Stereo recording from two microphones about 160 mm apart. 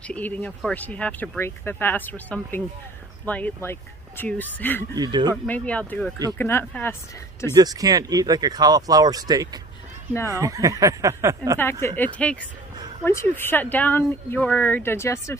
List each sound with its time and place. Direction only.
0.1 s speech: 10° left (ahead or behind)
4.9 s speech: 25° right (ahead or behind)
5.3 s speech: 10° left (ahead or behind)
7.5 s speech: 25° right (ahead or behind)
12.0 s speech: 10° left (ahead or behind)